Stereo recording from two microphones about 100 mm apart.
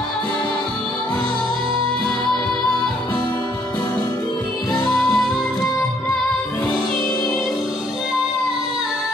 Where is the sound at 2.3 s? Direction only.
5° left (ahead or behind).